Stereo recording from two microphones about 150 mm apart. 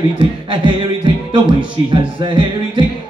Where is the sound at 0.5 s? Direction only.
35° right (ahead or behind).